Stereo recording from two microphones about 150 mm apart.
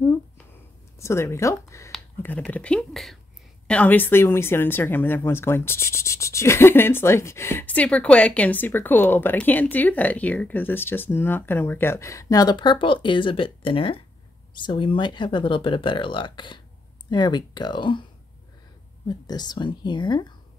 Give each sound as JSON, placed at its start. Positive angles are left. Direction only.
{"t": 0.9, "sound": "speech", "side_deg": 20}
{"t": 19.0, "sound": "speech", "side_deg": 25}